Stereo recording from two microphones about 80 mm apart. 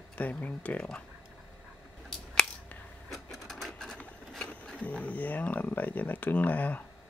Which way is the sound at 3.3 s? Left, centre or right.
Centre.